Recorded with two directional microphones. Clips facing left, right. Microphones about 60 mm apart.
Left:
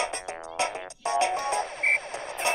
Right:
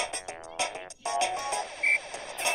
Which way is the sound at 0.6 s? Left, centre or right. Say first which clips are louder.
Left 4 dB; left.